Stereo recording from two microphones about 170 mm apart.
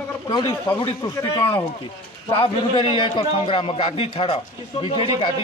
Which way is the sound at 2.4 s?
30° left (ahead or behind).